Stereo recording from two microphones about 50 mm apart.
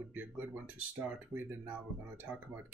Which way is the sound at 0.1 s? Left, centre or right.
Right.